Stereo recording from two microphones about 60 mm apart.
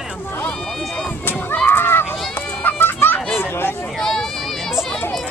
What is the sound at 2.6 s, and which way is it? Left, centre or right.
Children playing, left.